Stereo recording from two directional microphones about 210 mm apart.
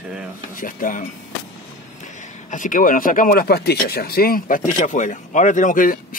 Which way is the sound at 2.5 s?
40° left (ahead or behind).